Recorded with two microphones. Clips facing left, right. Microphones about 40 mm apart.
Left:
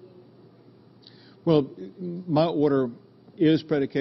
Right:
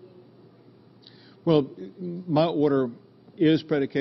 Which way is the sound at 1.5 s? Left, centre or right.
Centre.